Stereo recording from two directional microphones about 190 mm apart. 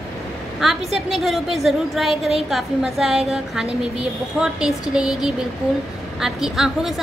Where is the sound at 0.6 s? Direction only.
Centre (ahead or behind).